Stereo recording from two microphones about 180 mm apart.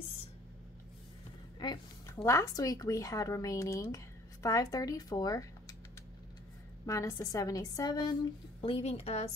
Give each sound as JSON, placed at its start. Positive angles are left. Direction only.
{"t": 1.6, "sound": "speech", "side_deg": 25}
{"t": 6.9, "sound": "a woman's voice", "side_deg": 15}